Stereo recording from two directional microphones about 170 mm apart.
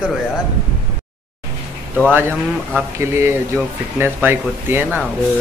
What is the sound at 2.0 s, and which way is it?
Speech, 10° right (ahead or behind).